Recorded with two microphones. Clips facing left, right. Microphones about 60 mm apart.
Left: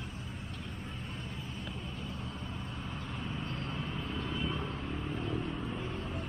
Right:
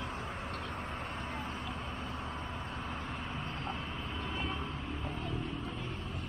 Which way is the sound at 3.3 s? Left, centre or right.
Centre.